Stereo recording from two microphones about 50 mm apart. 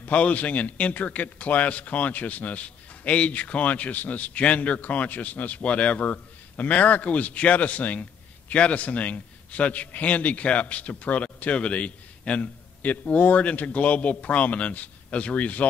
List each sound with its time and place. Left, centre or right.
0.0 s a man's voice: left